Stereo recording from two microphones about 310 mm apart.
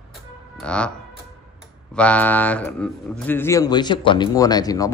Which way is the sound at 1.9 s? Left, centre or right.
Centre.